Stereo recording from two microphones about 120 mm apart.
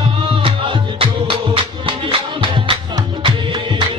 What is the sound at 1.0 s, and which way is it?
Music, 45° right (ahead or behind).